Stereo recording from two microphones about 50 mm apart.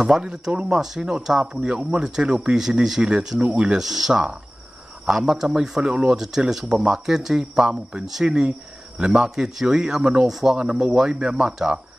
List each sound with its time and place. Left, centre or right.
0.0 s speech: centre
3.8 s speech: centre
6.2 s speech: centre